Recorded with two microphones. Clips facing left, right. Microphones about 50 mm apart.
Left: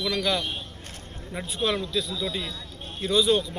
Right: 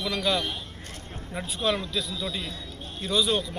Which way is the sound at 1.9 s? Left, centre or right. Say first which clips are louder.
Left 2 dB; right.